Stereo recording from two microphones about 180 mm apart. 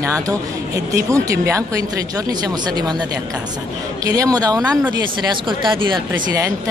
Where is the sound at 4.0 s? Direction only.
20° right (ahead or behind).